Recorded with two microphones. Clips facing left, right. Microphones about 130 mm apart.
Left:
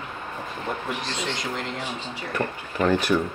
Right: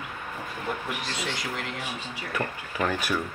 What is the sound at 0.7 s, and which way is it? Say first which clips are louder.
Speech: left 2 dB; 20° left (ahead or behind).